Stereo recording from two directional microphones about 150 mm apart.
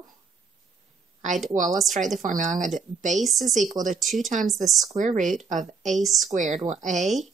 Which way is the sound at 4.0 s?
Centre (ahead or behind).